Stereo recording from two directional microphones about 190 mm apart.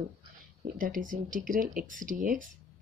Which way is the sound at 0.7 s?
45° right (ahead or behind).